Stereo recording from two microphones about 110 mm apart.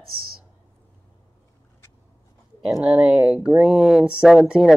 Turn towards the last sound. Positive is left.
turn(degrees=-10)  # may be behind; listen again after turning